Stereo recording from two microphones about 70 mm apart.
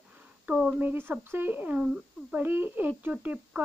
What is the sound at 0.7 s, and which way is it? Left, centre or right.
Speech, right.